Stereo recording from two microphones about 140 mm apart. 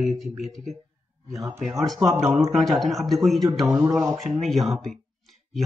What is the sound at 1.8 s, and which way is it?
A man's voice, centre (ahead or behind).